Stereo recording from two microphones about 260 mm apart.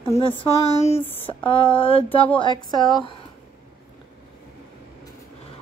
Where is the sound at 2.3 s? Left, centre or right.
Centre.